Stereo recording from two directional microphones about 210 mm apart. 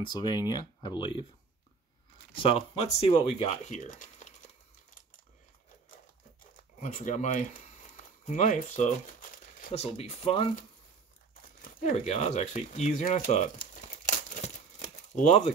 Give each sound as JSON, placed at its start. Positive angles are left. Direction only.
{"t": 0.0, "sound": "speech", "side_deg": 20}
{"t": 2.3, "sound": "speech", "side_deg": 25}
{"t": 6.8, "sound": "speech", "side_deg": 35}
{"t": 9.7, "sound": "speech", "side_deg": 25}
{"t": 11.6, "sound": "a sound", "side_deg": 35}